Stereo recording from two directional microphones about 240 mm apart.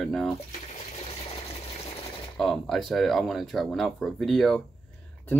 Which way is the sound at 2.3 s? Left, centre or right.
Centre.